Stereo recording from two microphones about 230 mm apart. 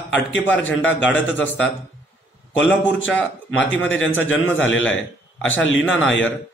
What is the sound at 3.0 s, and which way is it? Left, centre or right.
A man's voice, left.